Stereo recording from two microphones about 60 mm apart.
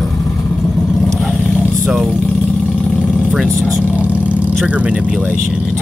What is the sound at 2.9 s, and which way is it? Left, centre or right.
Vehicle, centre.